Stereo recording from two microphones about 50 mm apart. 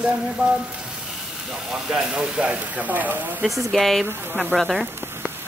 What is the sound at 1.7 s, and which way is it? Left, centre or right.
A woman's voice, centre.